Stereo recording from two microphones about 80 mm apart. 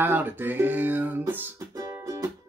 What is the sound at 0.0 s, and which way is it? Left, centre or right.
Music, right.